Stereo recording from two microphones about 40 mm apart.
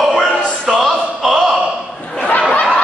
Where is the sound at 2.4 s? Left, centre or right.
Left.